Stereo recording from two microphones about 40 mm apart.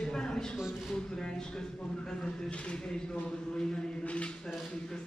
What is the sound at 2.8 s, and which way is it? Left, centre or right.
Speech, centre.